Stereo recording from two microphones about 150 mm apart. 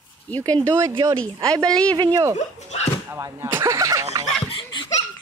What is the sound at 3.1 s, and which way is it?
Speech, 20° right (ahead or behind).